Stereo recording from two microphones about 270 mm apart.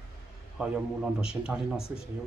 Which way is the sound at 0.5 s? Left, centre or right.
Centre.